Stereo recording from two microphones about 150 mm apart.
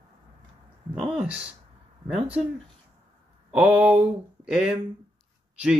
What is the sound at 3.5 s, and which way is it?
Speech, 5° right (ahead or behind).